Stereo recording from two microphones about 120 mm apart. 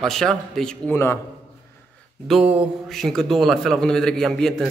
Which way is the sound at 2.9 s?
5° left (ahead or behind).